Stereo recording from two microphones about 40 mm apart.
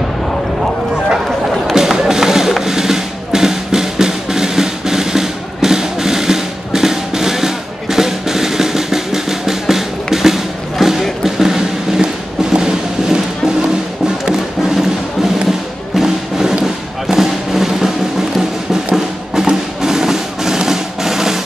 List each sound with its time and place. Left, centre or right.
1.8 s music: centre
11.2 s a sound: centre
12.5 s music: centre
16.0 s music: centre